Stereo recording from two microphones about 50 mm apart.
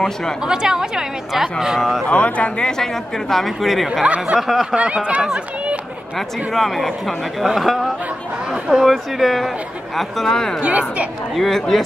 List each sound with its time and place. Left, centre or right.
0.0 s speech: centre
0.4 s a woman's voice: centre
2.0 s speech: left
2.8 s speech: centre
4.0 s speech: right
4.4 s speech: centre
4.6 s speech: right
6.1 s speech: centre
10.6 s speech: right
11.3 s speech: centre